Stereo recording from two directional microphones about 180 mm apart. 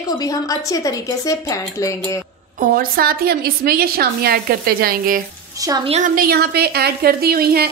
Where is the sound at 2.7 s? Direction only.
55° right (ahead or behind).